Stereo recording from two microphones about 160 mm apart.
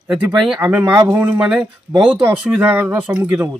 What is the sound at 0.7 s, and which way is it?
Speech, 10° right (ahead or behind).